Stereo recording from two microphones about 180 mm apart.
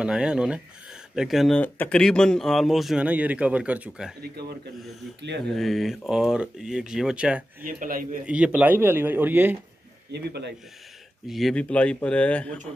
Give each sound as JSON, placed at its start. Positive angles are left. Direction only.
{"t": 0.0, "sound": "speech", "side_deg": -5}
{"t": 5.2, "sound": "speech", "side_deg": -75}
{"t": 5.6, "sound": "speech", "side_deg": 0}
{"t": 7.6, "sound": "a man's voice", "side_deg": -50}
{"t": 8.3, "sound": "speech", "side_deg": -5}
{"t": 10.1, "sound": "speech", "side_deg": -65}
{"t": 11.2, "sound": "speech", "side_deg": 0}